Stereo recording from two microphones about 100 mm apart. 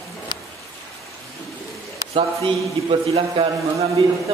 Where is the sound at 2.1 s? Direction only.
65° right (ahead or behind).